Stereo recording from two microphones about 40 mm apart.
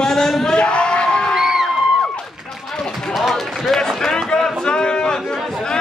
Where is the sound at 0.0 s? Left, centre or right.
Centre.